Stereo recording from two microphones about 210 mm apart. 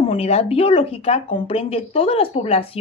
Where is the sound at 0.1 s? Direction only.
30° left (ahead or behind).